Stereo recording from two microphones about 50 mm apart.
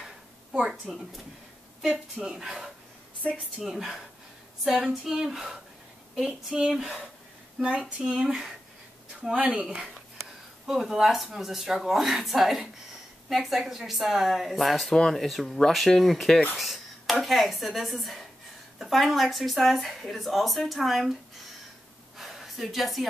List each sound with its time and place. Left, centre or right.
0.0 s a sound: centre
0.9 s speech: centre
2.4 s speech: centre
6.8 s speech: centre
7.8 s speech: centre
10.7 s speech: centre
22.1 s gasp: centre